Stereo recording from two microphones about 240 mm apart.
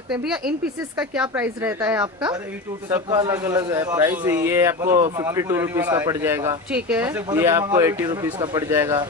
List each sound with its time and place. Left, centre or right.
0.9 s speech: centre